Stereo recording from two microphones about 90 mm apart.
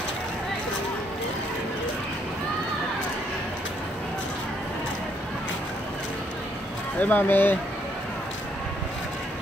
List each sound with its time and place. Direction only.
7.0 s speech: 20° left (ahead or behind)